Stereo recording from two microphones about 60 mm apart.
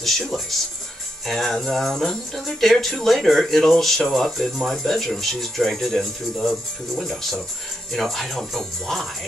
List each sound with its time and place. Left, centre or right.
0.0 s speech: centre